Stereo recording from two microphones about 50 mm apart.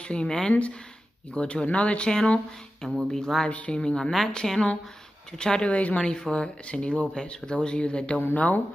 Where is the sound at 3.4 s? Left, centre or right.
Left.